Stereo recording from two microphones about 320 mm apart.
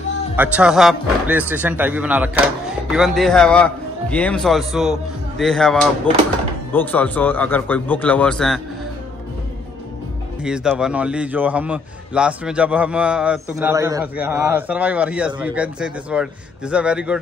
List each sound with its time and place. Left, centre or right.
0.4 s a man's voice: centre
10.4 s a man's voice: centre